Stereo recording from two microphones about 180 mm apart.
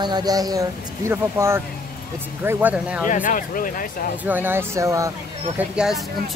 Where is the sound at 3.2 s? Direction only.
50° left (ahead or behind).